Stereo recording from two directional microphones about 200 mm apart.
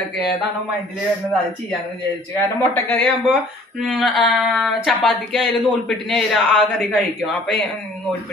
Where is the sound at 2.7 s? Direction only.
10° left (ahead or behind).